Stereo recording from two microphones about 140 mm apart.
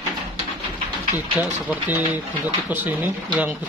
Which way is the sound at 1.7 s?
10° right (ahead or behind).